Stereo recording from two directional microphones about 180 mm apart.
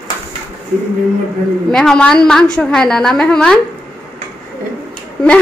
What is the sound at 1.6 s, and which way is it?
A woman's voice, 5° left (ahead or behind).